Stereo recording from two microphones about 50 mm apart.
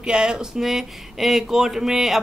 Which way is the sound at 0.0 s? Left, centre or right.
Centre.